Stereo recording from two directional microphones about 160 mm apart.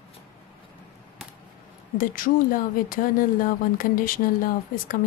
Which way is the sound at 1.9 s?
60° left (ahead or behind).